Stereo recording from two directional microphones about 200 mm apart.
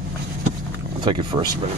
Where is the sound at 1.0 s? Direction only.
25° right (ahead or behind).